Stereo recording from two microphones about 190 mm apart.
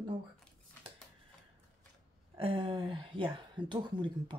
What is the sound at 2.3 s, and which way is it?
Speech, 30° right (ahead or behind).